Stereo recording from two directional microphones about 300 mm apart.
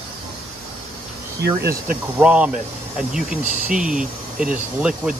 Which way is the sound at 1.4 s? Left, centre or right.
Right.